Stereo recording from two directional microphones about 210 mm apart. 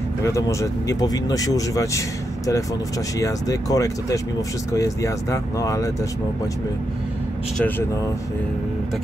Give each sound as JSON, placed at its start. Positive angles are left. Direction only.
{"t": 0.2, "sound": "speech", "side_deg": 15}